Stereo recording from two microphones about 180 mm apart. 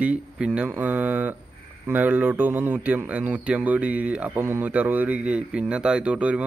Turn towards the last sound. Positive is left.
turn(degrees=-5)  # may be behind; listen again after turning